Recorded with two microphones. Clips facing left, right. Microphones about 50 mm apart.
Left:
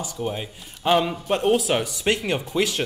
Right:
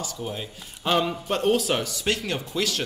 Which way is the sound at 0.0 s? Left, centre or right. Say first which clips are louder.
Left 4 dB; centre.